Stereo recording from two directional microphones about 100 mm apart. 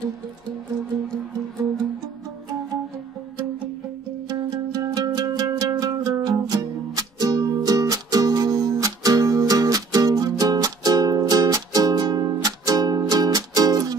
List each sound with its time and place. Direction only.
4.3 s music: 40° right (ahead or behind)